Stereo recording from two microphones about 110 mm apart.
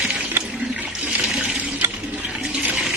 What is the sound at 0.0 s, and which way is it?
Water, 10° right (ahead or behind).